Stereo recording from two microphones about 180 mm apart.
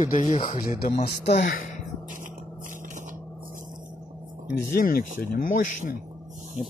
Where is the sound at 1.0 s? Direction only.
65° left (ahead or behind).